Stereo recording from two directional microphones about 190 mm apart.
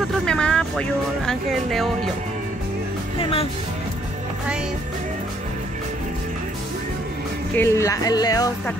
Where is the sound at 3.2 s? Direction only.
30° left (ahead or behind).